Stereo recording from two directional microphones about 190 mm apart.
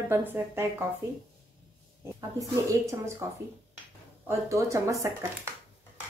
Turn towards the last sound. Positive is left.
turn(degrees=-15)  # may be behind; listen again after turning